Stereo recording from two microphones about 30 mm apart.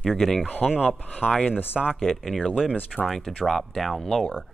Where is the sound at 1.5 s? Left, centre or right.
Left.